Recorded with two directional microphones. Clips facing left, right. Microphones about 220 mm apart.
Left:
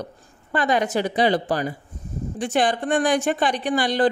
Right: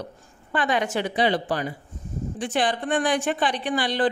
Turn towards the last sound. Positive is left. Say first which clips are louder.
# left 3 dB
turn(degrees=45)  # may be behind; listen again after turning